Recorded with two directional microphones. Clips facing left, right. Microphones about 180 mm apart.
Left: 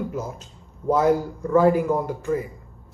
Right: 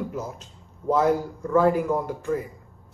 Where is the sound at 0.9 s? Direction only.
5° left (ahead or behind).